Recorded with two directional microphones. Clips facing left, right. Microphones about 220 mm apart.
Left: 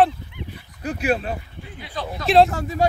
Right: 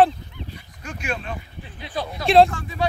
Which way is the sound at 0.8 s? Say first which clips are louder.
Left 8 dB; 35° left (ahead or behind).